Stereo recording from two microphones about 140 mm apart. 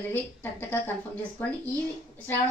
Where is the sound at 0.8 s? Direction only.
15° left (ahead or behind).